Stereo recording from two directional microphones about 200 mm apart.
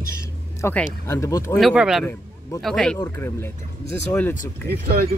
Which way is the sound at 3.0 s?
15° left (ahead or behind).